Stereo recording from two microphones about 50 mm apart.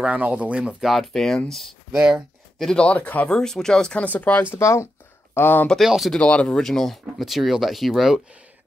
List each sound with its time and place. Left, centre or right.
0.0 s speech: right
0.9 s speech: centre
1.9 s speech: centre
2.7 s speech: left
3.3 s speech: centre
4.0 s speech: left
4.6 s speech: left
5.3 s speech: left
5.8 s speech: centre
6.1 s speech: left
6.6 s speech: centre